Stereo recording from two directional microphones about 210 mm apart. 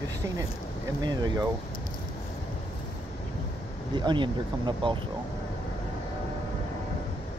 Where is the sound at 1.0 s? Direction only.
20° right (ahead or behind).